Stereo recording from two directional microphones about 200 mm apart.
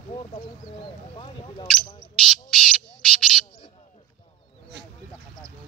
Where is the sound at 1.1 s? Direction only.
25° left (ahead or behind).